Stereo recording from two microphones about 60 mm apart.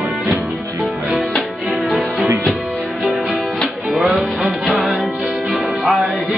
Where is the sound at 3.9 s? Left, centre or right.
Centre.